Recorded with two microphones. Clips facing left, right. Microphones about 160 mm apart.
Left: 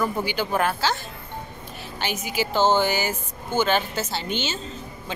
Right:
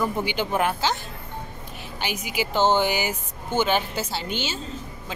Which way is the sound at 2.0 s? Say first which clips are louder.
Left 1 dB; 15° right (ahead or behind).